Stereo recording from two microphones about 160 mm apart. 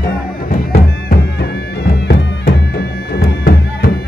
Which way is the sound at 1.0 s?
85° left.